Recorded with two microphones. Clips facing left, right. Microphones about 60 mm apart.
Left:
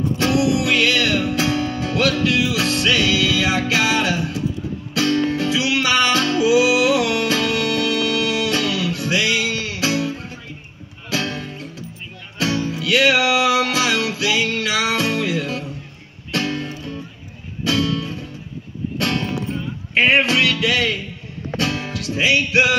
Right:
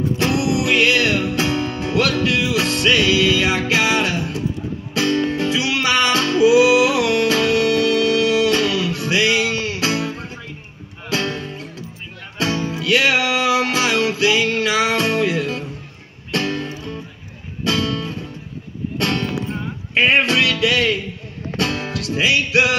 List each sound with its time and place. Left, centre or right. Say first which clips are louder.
0.2 s music: left 2 dB; right